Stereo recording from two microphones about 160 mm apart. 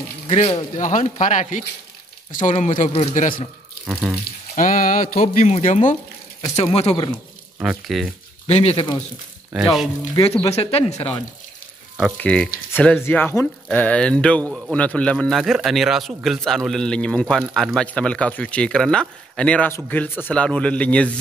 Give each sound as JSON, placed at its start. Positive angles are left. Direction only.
{"t": 0.3, "sound": "speech", "side_deg": 35}
{"t": 0.7, "sound": "speech", "side_deg": 50}
{"t": 2.9, "sound": "speech", "side_deg": 40}
{"t": 3.8, "sound": "a man's voice", "side_deg": -5}
{"t": 4.6, "sound": "speech", "side_deg": 55}
{"t": 6.4, "sound": "speech", "side_deg": 40}
{"t": 7.5, "sound": "a man's voice", "side_deg": -5}
{"t": 8.5, "sound": "speech", "side_deg": 40}
{"t": 9.5, "sound": "a man's voice", "side_deg": 0}
{"t": 10.5, "sound": "speech", "side_deg": 40}
{"t": 12.0, "sound": "a man's voice", "side_deg": 5}